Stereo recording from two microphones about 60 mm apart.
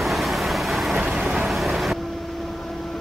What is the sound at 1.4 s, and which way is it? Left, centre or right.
Vehicle, centre.